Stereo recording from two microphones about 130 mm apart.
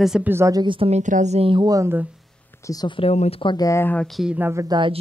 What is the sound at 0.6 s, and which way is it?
Speech, 40° right (ahead or behind).